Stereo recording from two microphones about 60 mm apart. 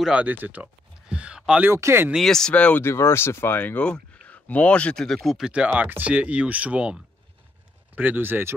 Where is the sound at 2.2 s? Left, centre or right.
Centre.